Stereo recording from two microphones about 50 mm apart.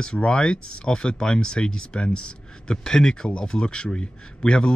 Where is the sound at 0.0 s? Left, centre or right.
Centre.